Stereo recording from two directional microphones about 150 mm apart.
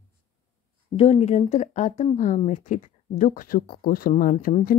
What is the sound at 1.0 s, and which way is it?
Speech, 45° left (ahead or behind).